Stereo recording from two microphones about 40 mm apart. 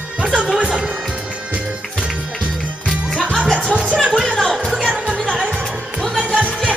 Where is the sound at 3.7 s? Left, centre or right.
Right.